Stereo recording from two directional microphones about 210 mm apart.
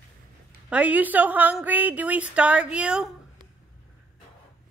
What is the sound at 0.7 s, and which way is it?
A woman's voice, 5° right (ahead or behind).